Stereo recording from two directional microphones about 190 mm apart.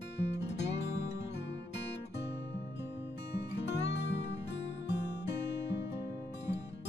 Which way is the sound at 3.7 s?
65° left (ahead or behind).